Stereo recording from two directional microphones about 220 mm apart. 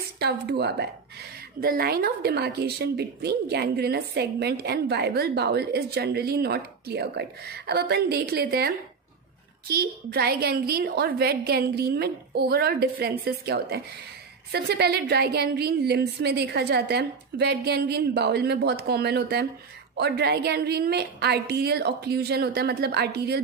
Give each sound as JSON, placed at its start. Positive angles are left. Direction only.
{"t": 0.2, "sound": "speech", "side_deg": -45}